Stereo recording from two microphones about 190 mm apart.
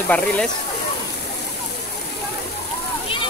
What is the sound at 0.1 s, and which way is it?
Speech, 10° left (ahead or behind).